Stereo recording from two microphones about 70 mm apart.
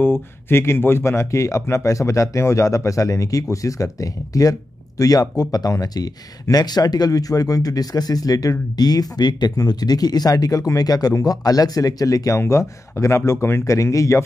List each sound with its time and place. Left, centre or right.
0.0 s speech: left
12.4 s speech: left